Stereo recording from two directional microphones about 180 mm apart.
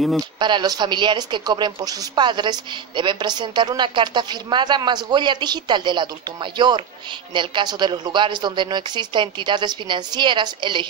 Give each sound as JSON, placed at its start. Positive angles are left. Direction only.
{"t": 0.4, "sound": "a woman's voice", "side_deg": -25}